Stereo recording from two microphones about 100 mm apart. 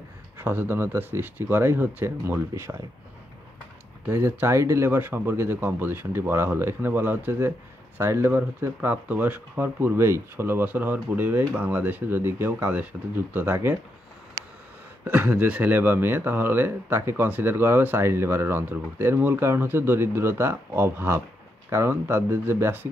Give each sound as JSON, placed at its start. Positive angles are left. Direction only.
{"t": 0.4, "sound": "speech", "side_deg": -20}
{"t": 4.1, "sound": "speech", "side_deg": -25}
{"t": 15.0, "sound": "speech", "side_deg": -15}